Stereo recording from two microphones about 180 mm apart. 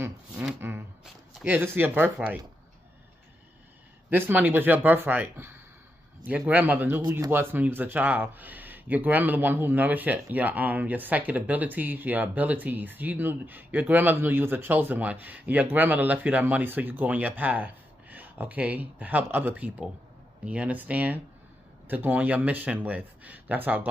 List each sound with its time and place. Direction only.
0.0 s speech: 10° right (ahead or behind)
4.1 s speech: 10° right (ahead or behind)
7.0 s speech: 20° right (ahead or behind)
7.2 s speech: 10° right (ahead or behind)